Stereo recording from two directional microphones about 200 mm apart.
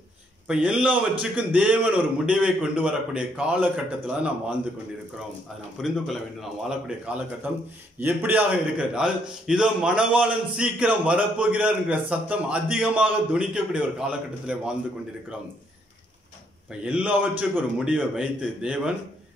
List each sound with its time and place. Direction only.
0.5 s a man's voice: 5° right (ahead or behind)
5.8 s a man's voice: centre (ahead or behind)
16.8 s a man's voice: 5° right (ahead or behind)